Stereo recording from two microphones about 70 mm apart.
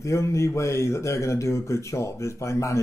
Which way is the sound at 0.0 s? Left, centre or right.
Left.